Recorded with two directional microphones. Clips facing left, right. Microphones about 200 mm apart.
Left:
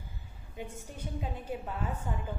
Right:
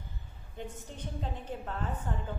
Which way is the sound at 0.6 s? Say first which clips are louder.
Even; 10° left (ahead or behind).